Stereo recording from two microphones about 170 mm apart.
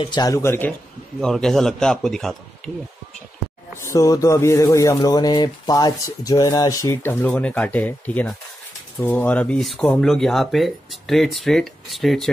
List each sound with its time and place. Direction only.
0.0 s speech: 25° left (ahead or behind)
1.2 s speech: centre (ahead or behind)
3.7 s speech: 20° left (ahead or behind); by 12.3 s centre (ahead or behind)